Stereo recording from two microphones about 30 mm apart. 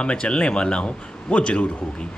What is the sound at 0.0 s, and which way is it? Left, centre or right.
Speech, left.